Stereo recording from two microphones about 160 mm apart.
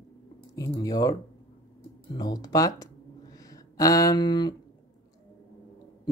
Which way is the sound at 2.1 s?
25° left (ahead or behind).